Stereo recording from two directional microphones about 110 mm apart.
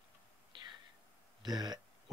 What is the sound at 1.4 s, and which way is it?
Throat clearing, 40° right (ahead or behind).